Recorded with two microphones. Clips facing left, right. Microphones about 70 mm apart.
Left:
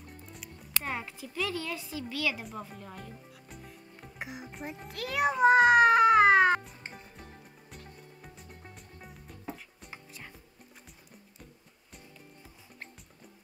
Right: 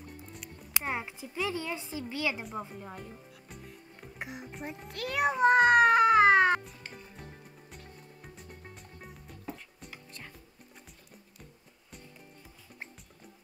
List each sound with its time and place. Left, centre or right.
0.3 s music: centre
0.7 s a woman's voice: centre
3.0 s music: centre
4.2 s a child's voice: centre
8.4 s music: centre